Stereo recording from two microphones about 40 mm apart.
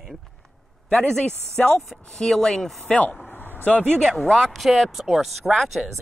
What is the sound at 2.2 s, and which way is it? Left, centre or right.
Speech, centre.